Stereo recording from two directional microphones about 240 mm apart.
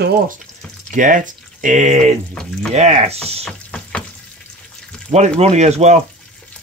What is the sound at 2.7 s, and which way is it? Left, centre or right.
Speech, right.